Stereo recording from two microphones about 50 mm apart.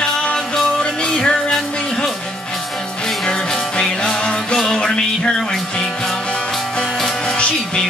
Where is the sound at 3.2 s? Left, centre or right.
Centre.